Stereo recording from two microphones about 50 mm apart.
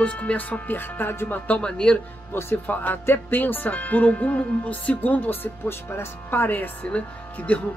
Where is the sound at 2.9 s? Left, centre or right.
Left.